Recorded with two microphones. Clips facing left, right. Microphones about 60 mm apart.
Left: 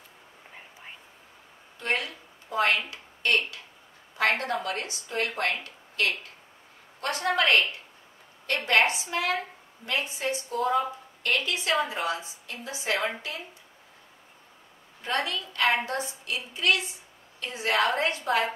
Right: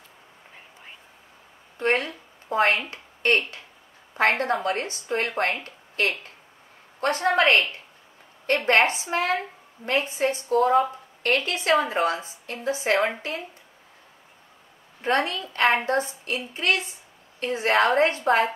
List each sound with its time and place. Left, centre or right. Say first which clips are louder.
1.8 s a woman's voice: right 6 dB; right
15.0 s a woman's voice: right 5 dB; right